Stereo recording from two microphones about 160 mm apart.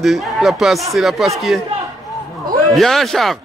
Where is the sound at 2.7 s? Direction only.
Centre (ahead or behind).